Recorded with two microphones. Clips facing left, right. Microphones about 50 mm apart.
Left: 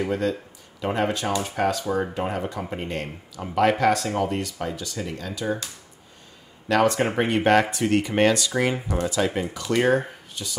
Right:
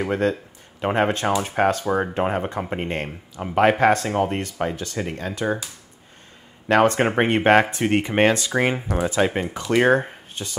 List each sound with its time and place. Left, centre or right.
0.0 s speech: right
6.7 s speech: right